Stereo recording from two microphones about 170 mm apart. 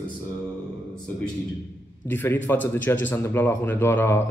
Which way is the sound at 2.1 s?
10° left (ahead or behind).